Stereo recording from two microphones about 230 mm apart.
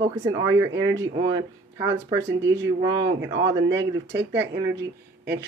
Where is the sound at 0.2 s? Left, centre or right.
Centre.